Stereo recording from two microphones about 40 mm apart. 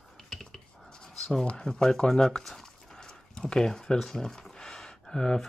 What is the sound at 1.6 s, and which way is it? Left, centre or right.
Speech, centre.